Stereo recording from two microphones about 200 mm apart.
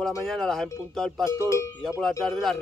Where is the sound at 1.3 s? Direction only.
15° left (ahead or behind).